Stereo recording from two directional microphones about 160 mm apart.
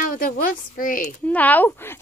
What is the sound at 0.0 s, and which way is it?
A woman's voice, 65° left (ahead or behind).